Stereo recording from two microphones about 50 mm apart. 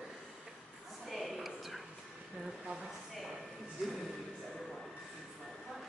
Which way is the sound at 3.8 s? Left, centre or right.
Centre.